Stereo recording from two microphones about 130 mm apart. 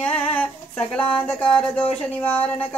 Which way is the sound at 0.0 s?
15° left (ahead or behind).